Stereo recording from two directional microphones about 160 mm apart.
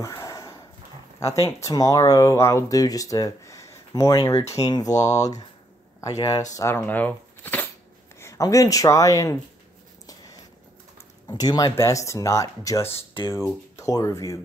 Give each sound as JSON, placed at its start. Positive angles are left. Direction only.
{"t": 0.0, "sound": "sniff", "side_deg": 20}
{"t": 1.6, "sound": "a man's voice", "side_deg": 25}
{"t": 11.2, "sound": "speech", "side_deg": 25}